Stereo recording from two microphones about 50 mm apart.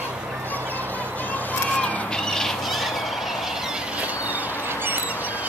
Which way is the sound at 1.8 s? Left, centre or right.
Left.